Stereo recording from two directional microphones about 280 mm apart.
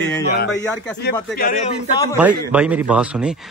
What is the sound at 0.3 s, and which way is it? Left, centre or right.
A man's voice, left.